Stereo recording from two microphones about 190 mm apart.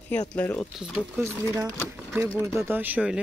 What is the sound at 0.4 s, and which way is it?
Speech, 10° left (ahead or behind).